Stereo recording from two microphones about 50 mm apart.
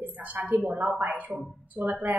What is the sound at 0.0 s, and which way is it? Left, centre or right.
A woman's voice, right.